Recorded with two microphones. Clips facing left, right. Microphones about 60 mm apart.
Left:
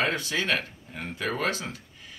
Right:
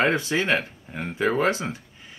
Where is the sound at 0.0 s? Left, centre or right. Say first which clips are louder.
Right 5 dB; right.